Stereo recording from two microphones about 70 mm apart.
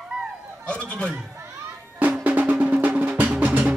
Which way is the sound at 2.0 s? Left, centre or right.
Right.